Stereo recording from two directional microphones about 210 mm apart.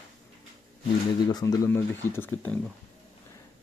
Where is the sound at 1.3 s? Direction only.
20° left (ahead or behind).